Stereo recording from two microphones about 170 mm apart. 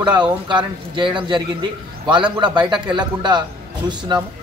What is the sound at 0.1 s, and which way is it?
A man's voice, 25° right (ahead or behind).